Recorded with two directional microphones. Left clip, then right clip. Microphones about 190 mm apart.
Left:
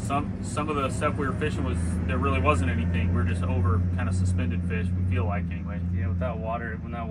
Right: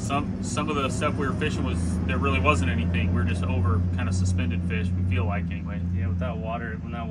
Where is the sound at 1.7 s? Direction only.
55° right (ahead or behind).